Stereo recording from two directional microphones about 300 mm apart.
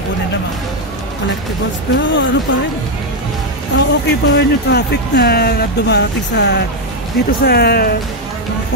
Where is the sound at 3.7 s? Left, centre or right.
Left.